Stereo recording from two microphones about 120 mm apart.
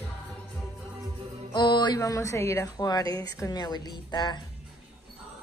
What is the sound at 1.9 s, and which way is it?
A woman's voice, 25° left (ahead or behind).